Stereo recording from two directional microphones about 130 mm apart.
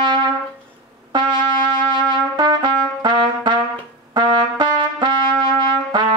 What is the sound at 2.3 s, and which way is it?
Trumpet, 35° right (ahead or behind).